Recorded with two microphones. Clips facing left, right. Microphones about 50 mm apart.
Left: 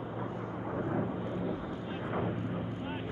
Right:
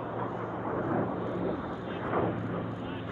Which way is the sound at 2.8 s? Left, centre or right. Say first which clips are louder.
Right 1 dB; left.